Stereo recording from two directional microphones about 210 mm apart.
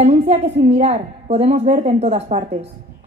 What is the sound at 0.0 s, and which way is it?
A woman's voice, 35° right (ahead or behind).